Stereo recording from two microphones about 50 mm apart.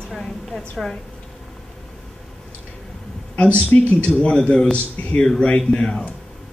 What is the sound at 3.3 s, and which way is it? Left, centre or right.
A man's voice, left.